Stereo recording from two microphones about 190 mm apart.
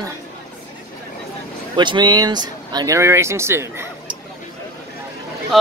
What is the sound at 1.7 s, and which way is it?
Speech, 25° right (ahead or behind).